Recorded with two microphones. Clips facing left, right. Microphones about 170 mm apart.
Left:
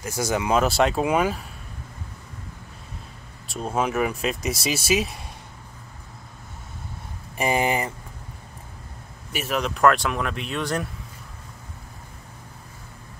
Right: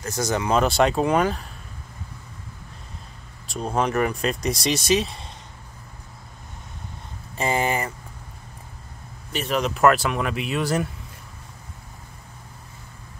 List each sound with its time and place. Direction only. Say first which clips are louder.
0.0 s speech: even; 10° left (ahead or behind)
3.4 s speech: right 1 dB; 5° left (ahead or behind)
7.3 s speech: left 1 dB; 15° left (ahead or behind)
9.3 s speech: right 2 dB; 5° left (ahead or behind)